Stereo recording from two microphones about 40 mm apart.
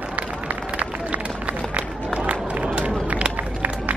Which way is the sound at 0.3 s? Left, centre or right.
Right.